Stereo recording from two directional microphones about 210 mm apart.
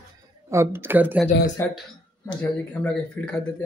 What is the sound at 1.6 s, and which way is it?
Speech, 10° left (ahead or behind).